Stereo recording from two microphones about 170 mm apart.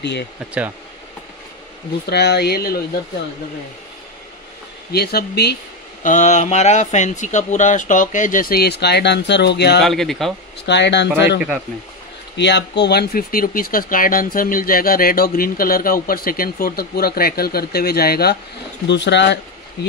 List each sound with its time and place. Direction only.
0.0 s speech: 90° left
2.0 s speech: 80° left
4.9 s speech: 70° left (ahead or behind)
6.0 s speech: 45° left (ahead or behind); by 9.8 s 80° left
9.8 s speech: centre (ahead or behind)
10.6 s speech: 90° left
12.4 s speech: 90° left; by 18.4 s 65° left (ahead or behind)
18.9 s speech: 90° left